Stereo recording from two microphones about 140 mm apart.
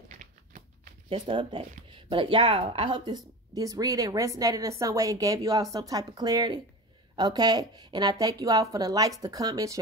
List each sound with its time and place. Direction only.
0.2 s a sound: 65° right (ahead or behind)
1.0 s speech: 35° right (ahead or behind)
3.5 s a woman's voice: 25° right (ahead or behind)